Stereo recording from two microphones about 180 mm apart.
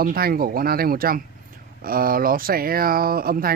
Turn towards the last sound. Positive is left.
turn(degrees=-55)  # may be behind; listen again after turning